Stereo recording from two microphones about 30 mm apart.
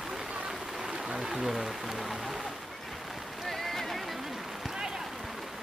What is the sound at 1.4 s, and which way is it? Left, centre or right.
Speech, centre.